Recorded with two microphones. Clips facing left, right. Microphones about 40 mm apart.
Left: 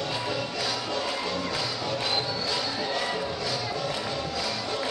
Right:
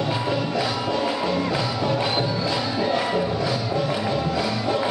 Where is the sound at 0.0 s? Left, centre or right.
Centre.